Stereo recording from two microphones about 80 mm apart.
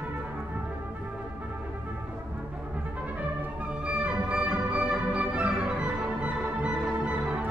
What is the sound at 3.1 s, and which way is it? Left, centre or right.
Music, centre.